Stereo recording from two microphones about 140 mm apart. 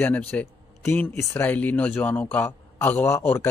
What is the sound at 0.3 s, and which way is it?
Speech, 15° left (ahead or behind).